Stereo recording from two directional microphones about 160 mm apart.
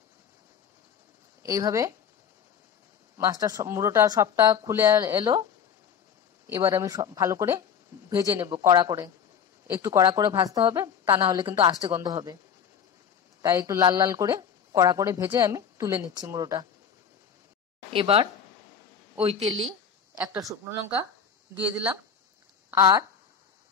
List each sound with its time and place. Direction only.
1.4 s speech: 20° right (ahead or behind)
3.2 s speech: 20° right (ahead or behind)
6.4 s speech: 15° right (ahead or behind)
13.4 s speech: 20° right (ahead or behind)
17.9 s speech: 35° right (ahead or behind)
21.5 s speech: 10° right (ahead or behind)
22.8 s speech: 25° right (ahead or behind)